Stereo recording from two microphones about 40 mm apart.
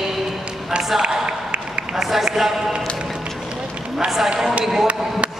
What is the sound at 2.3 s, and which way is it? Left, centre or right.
Speech, centre.